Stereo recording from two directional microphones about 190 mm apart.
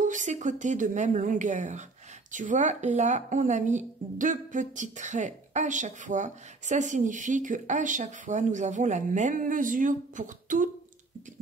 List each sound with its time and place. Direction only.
0.0 s a woman's voice: 40° right (ahead or behind)